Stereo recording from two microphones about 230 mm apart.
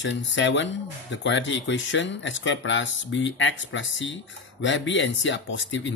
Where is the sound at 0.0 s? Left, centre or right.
Left.